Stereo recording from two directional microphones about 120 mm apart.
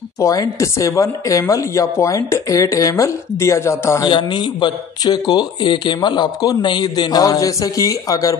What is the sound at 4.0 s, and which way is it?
Speech, 40° left (ahead or behind).